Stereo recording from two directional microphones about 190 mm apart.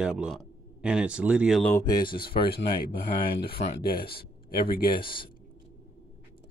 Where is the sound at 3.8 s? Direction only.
55° left (ahead or behind).